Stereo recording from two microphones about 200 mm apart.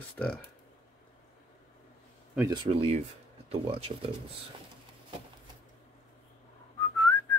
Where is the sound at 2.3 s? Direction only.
15° right (ahead or behind).